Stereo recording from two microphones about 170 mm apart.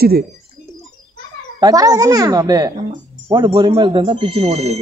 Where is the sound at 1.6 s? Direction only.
20° right (ahead or behind).